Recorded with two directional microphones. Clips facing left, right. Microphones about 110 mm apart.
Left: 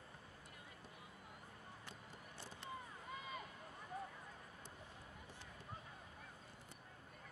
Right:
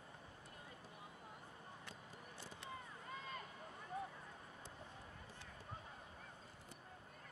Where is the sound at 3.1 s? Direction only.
10° left (ahead or behind).